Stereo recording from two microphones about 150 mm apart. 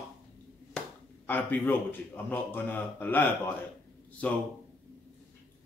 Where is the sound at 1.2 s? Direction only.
10° left (ahead or behind).